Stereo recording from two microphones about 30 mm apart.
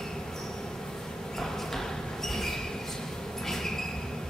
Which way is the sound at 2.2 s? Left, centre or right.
Centre.